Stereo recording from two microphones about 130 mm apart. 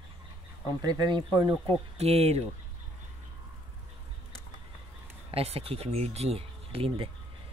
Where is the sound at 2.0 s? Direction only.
55° right (ahead or behind).